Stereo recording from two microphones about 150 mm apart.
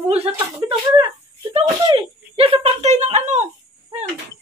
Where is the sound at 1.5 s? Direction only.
40° right (ahead or behind).